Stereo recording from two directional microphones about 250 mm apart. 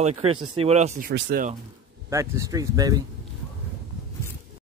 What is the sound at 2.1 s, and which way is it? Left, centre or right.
Speech, centre.